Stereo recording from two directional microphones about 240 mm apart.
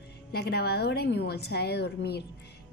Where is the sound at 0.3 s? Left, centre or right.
Left.